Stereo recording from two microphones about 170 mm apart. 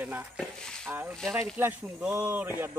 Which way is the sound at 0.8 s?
10° right (ahead or behind).